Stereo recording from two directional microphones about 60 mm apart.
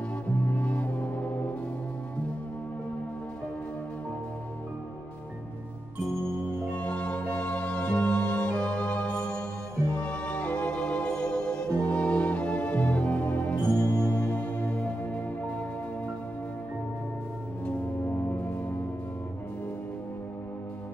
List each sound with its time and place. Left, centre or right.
0.5 s music: left
6.7 s music: left
17.6 s music: left